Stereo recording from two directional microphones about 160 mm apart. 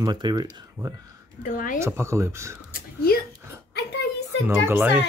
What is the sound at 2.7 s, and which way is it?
Speech, 70° left (ahead or behind).